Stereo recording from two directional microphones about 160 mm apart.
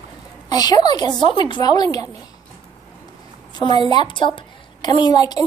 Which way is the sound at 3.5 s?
25° left (ahead or behind).